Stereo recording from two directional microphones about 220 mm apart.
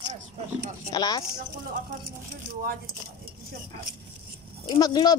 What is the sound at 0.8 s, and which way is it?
Speech, 15° left (ahead or behind).